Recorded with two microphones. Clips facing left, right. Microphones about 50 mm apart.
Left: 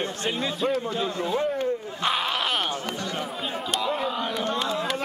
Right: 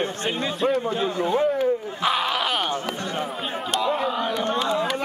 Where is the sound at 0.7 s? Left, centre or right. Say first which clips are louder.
Right 3 dB; right.